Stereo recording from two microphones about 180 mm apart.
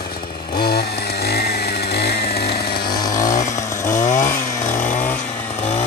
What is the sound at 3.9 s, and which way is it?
Chainsaw, 45° left (ahead or behind).